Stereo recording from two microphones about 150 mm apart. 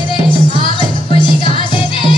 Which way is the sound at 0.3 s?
35° left (ahead or behind).